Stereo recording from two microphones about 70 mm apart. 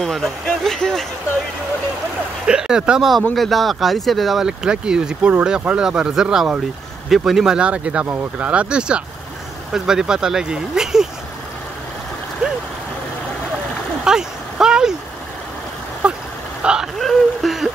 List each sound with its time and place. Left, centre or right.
0.0 s speech: centre
2.4 s speech: centre
3.3 s speech: centre
14.0 s vehicle: centre
16.0 s vehicle: centre
16.6 s a sound: centre
17.0 s a sound: centre